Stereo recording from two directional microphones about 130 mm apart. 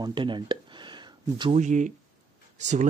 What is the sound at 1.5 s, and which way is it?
Speech, 70° right (ahead or behind).